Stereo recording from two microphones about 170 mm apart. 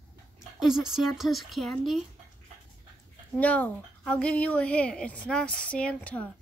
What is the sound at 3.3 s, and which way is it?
Speech, 10° left (ahead or behind).